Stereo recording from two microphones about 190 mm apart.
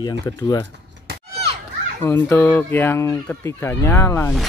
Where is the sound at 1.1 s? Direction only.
55° right (ahead or behind).